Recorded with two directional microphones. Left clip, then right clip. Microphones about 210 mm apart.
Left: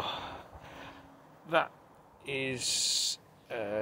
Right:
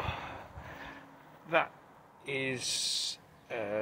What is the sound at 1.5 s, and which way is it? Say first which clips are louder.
Speech: left 1 dB; 10° left (ahead or behind).